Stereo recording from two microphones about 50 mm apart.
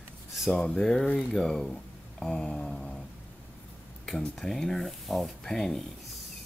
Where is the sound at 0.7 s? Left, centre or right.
Centre.